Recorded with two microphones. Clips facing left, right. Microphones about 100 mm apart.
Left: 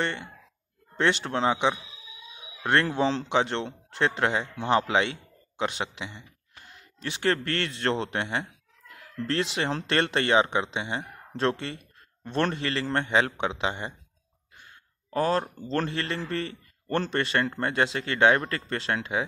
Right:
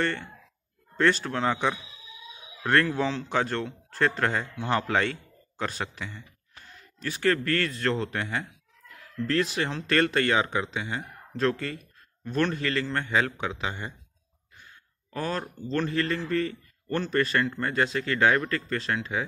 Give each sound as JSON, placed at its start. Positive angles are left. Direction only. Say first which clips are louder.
{"t": 0.0, "sound": "a man's voice", "louder": "right 1 dB", "side_deg": 15}
{"t": 15.0, "sound": "a man's voice", "louder": "left 6 dB", "side_deg": 40}